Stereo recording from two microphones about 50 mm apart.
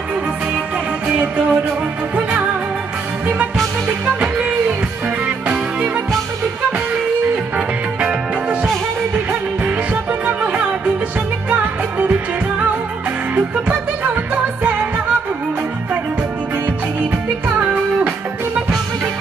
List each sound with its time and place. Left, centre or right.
1.0 s music: right
4.2 s music: right
7.5 s music: right